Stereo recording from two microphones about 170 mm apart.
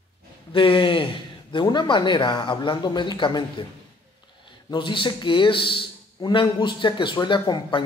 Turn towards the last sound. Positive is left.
turn(degrees=25)  # may be behind; listen again after turning